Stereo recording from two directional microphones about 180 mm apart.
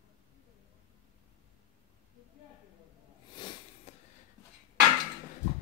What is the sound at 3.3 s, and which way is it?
Sniff, 25° left (ahead or behind).